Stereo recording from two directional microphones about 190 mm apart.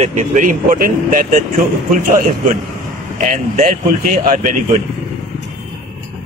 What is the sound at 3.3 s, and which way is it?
Speech, 40° right (ahead or behind).